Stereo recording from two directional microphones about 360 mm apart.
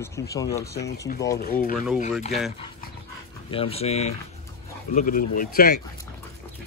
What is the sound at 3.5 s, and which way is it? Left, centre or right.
Speech, centre.